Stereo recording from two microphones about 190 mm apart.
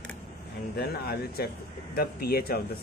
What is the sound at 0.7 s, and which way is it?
Speech, 55° left (ahead or behind).